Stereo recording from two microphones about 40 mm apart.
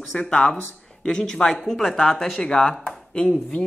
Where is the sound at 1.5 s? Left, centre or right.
Centre.